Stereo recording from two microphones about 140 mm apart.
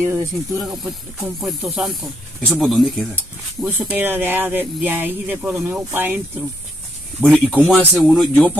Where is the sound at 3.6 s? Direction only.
15° right (ahead or behind).